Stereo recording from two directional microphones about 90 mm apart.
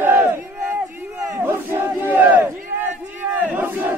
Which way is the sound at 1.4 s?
25° right (ahead or behind).